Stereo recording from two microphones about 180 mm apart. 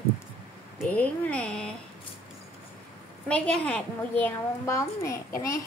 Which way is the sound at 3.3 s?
5° left (ahead or behind).